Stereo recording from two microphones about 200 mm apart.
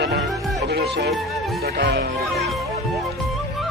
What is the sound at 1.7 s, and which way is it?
Speech, 55° right (ahead or behind).